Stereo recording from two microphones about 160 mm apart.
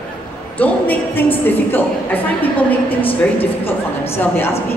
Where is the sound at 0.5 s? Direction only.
10° left (ahead or behind).